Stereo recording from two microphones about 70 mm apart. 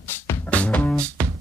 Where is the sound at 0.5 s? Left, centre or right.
Centre.